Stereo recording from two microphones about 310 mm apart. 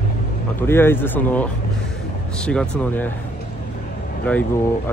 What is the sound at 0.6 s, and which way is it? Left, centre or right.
Speech, centre.